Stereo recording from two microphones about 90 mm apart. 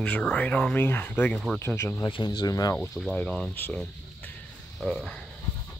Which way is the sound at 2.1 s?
50° left (ahead or behind).